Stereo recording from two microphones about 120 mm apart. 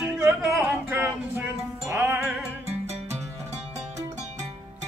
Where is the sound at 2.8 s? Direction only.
65° right (ahead or behind).